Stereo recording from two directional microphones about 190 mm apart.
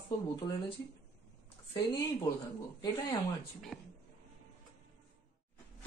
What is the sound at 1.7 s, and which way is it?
Speech, 25° left (ahead or behind).